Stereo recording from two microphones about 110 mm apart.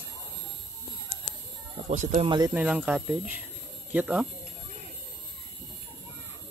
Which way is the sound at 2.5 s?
10° right (ahead or behind).